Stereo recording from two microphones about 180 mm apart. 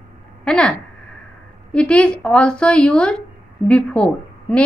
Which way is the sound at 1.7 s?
5° left (ahead or behind).